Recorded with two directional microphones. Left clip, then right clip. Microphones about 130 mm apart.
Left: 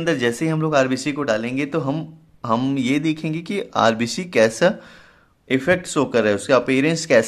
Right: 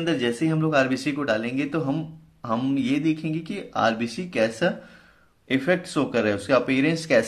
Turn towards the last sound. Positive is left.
turn(degrees=45)  # may be behind; listen again after turning